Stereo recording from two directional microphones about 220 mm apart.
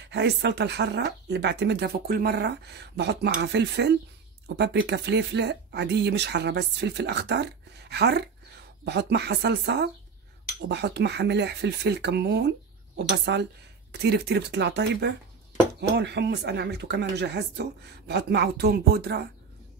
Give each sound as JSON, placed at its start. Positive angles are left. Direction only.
{"t": 0.1, "sound": "speech", "side_deg": -50}